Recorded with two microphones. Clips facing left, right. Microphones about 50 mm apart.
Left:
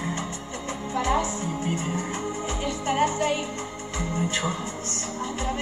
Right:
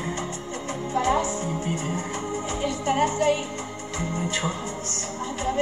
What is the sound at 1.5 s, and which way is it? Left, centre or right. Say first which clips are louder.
Music: even; left.